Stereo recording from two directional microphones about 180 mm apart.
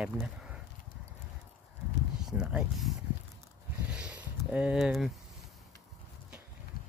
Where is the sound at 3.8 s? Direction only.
5° right (ahead or behind).